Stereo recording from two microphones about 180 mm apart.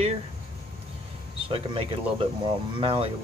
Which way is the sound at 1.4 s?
30° right (ahead or behind).